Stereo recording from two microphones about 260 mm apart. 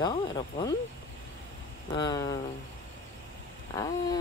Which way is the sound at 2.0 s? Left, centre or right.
Centre.